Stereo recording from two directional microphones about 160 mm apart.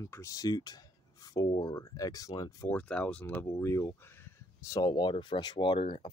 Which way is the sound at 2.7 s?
5° left (ahead or behind).